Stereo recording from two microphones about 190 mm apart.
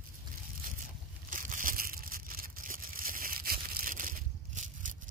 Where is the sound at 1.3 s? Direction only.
45° right (ahead or behind).